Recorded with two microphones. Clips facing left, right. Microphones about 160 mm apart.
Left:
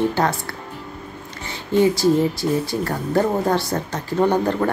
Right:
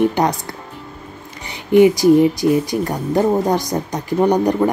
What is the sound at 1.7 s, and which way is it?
Speech, 15° right (ahead or behind).